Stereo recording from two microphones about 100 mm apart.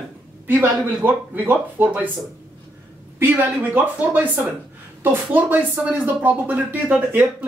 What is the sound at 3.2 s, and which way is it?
A man's voice, 15° right (ahead or behind).